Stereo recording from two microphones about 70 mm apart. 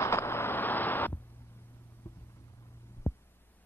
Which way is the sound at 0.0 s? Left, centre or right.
Left.